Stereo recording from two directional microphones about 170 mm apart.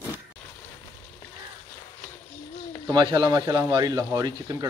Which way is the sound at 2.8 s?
20° right (ahead or behind).